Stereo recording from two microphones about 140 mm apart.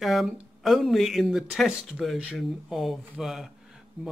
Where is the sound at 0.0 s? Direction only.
Centre (ahead or behind).